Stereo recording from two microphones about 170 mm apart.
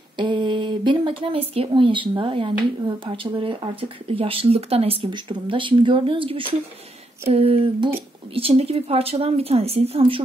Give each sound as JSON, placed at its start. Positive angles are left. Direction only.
{"t": 0.2, "sound": "speech", "side_deg": -30}